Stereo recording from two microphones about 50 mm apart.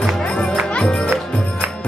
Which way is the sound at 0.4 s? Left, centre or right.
Left.